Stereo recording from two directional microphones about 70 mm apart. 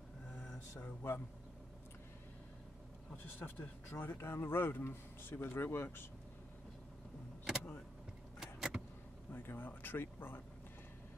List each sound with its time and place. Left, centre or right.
1.0 s speech: left
3.3 s speech: left
8.4 s vehicle: centre
9.3 s speech: left